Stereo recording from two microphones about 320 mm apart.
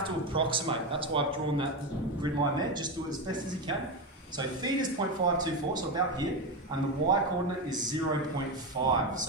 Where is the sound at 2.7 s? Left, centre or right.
Centre.